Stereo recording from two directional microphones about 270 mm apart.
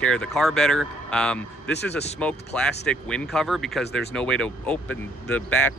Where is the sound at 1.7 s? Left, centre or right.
Left.